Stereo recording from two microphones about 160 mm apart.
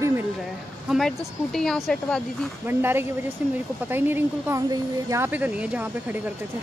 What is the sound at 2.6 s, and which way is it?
Speech, 15° right (ahead or behind).